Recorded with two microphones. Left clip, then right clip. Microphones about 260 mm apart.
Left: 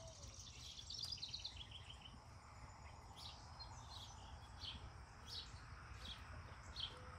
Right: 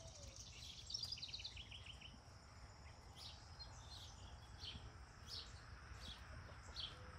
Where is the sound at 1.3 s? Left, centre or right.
Centre.